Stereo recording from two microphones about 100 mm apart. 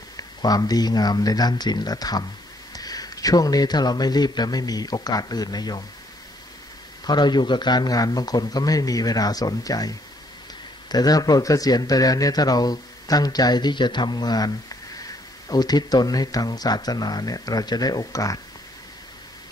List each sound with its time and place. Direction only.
0.2 s speech: 40° left (ahead or behind)
7.1 s speech: 45° left (ahead or behind)